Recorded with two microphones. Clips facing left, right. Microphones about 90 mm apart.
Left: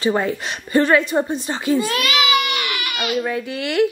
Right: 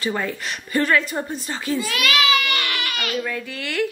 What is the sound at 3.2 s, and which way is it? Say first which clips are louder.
Speech: left 5 dB; 20° left (ahead or behind).